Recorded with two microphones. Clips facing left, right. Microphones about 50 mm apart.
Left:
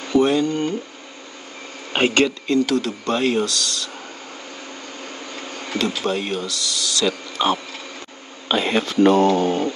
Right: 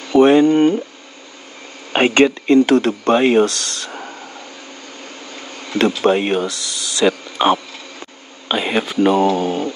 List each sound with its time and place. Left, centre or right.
0.1 s a sound: right
2.0 s speech: right
5.3 s insect: centre
6.0 s speech: right
8.5 s speech: centre